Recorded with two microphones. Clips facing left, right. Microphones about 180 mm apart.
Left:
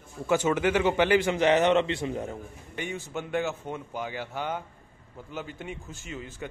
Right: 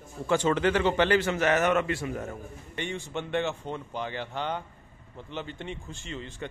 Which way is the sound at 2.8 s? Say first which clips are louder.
Even; 5° left (ahead or behind).